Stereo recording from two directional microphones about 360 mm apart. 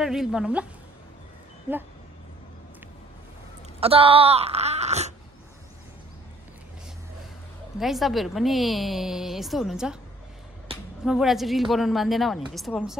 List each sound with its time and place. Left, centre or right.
0.0 s a woman's voice: centre
3.8 s speech: centre
7.8 s a woman's voice: centre
11.1 s a woman's voice: centre